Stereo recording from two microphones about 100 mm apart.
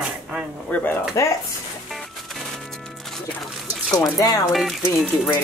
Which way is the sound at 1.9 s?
Centre (ahead or behind).